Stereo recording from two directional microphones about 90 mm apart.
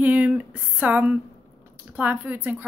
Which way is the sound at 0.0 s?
20° right (ahead or behind).